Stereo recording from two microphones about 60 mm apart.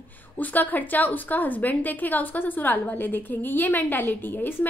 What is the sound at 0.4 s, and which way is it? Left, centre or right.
A woman's voice, left.